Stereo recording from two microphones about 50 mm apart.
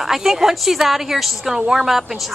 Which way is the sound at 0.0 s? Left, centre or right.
Centre.